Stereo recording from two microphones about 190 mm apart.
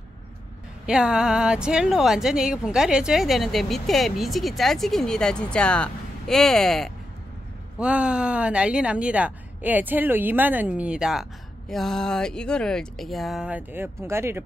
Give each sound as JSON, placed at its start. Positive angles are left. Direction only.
{"t": 0.8, "sound": "a woman's voice", "side_deg": -5}